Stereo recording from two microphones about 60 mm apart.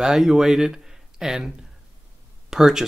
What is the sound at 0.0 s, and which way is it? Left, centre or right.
Speech, centre.